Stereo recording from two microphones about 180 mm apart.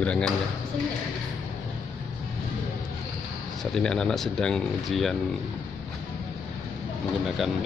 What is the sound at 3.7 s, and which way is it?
Speech, 5° left (ahead or behind).